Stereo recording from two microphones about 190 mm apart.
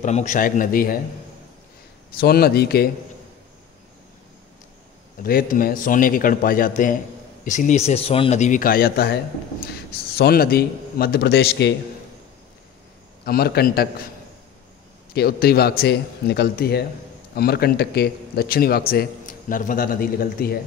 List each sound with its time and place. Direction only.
0.0 s speech: 40° left (ahead or behind)
2.1 s speech: 55° left (ahead or behind)
5.2 s speech: 50° left (ahead or behind)
13.2 s speech: 55° left (ahead or behind)
15.1 s speech: 55° left (ahead or behind)